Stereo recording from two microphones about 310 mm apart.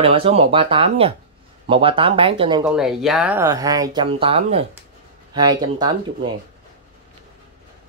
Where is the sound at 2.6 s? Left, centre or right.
Centre.